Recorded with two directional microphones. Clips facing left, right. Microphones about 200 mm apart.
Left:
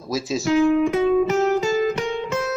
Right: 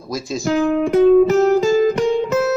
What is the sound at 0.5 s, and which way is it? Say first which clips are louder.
Speech: right 1 dB; 45° right (ahead or behind).